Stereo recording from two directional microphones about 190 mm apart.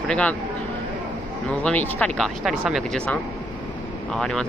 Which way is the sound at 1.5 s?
10° left (ahead or behind).